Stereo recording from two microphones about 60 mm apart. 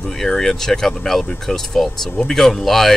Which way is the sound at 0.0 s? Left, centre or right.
Centre.